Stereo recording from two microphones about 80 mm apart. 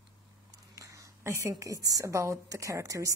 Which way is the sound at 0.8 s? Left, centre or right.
Right.